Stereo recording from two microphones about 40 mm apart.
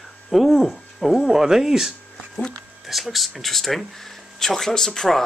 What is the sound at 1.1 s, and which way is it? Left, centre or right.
Speech, centre.